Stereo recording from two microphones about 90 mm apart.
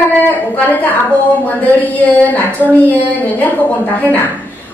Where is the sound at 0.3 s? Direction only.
20° left (ahead or behind).